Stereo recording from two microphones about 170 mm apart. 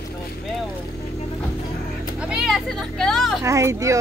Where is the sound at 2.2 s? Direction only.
5° right (ahead or behind).